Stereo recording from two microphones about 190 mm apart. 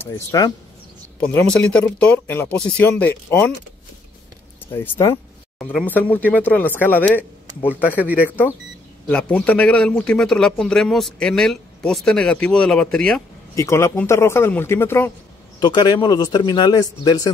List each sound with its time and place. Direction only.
0.1 s speech: 20° left (ahead or behind)
1.3 s speech: 5° left (ahead or behind)
4.7 s speech: 10° left (ahead or behind)
7.9 s speech: 10° right (ahead or behind)
8.2 s speech: 10° left (ahead or behind)
13.6 s speech: 15° left (ahead or behind)
15.6 s speech: 20° left (ahead or behind)